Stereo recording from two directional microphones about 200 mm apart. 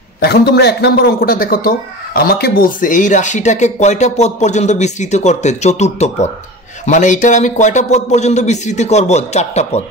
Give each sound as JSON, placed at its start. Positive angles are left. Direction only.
{"t": 0.2, "sound": "a man's voice", "side_deg": 55}